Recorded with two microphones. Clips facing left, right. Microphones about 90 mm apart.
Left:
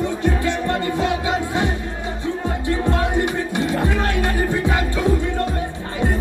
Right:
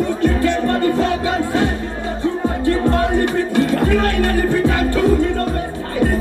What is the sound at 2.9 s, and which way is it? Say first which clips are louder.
Music: right 4 dB; 20° left (ahead or behind).